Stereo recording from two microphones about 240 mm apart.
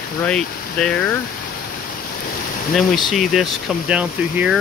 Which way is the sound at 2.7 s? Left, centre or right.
Centre.